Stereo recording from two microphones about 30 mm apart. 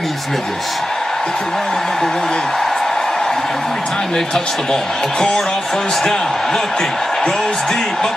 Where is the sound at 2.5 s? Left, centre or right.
Centre.